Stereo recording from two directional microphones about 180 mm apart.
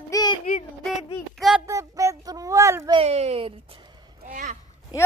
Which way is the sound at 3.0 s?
35° right (ahead or behind).